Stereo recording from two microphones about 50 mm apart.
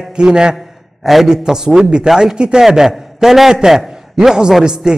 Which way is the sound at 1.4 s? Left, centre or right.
Centre.